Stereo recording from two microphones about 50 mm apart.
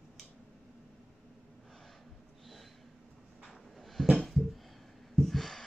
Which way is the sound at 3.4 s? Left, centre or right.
Centre.